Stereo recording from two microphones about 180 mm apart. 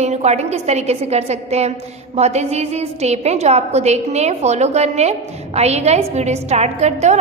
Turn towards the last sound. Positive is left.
turn(degrees=-40)  # may be behind; listen again after turning